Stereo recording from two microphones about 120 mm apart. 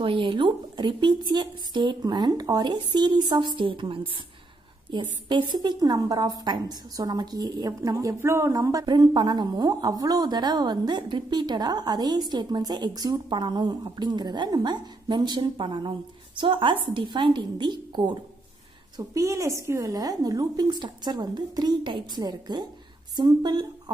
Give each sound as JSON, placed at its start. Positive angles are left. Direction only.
{"t": 0.0, "sound": "a woman's voice", "side_deg": -45}
{"t": 5.3, "sound": "a woman's voice", "side_deg": -40}
{"t": 18.9, "sound": "a woman's voice", "side_deg": -25}